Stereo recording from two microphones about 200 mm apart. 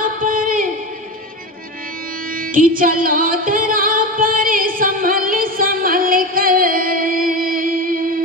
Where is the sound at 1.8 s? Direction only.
45° right (ahead or behind).